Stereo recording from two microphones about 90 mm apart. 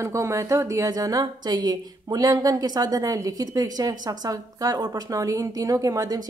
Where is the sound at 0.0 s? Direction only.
35° right (ahead or behind).